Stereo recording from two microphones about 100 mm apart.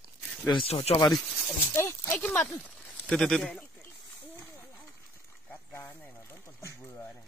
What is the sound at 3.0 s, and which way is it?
Speech, 5° left (ahead or behind).